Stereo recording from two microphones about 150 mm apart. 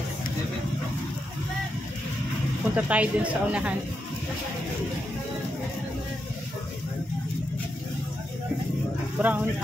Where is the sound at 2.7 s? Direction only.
10° right (ahead or behind).